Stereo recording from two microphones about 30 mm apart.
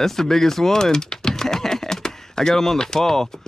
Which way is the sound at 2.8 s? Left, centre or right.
Centre.